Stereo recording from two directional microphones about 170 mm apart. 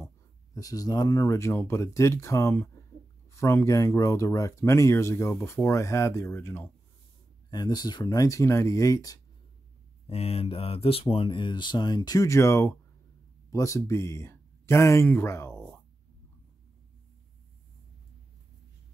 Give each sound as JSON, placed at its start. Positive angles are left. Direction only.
{"t": 0.6, "sound": "speech", "side_deg": 20}
{"t": 10.0, "sound": "speech", "side_deg": 35}